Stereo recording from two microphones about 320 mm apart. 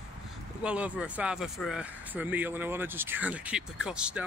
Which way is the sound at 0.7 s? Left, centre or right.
Centre.